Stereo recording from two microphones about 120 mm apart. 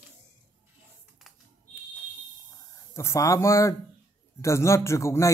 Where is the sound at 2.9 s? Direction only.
25° left (ahead or behind).